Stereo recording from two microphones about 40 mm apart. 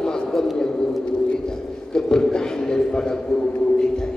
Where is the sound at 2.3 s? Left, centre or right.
Centre.